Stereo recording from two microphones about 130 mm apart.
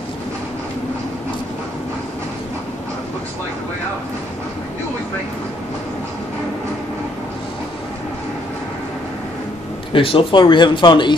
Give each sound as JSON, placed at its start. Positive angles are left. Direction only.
{"t": 9.9, "sound": "speech", "side_deg": 40}